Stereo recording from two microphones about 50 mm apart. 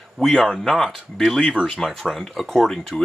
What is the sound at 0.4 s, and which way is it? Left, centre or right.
Speech, centre.